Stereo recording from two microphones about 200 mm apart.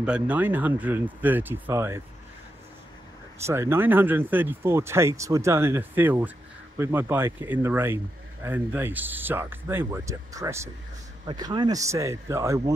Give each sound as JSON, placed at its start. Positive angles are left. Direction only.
{"t": 0.0, "sound": "speech", "side_deg": -5}
{"t": 3.4, "sound": "speech", "side_deg": -10}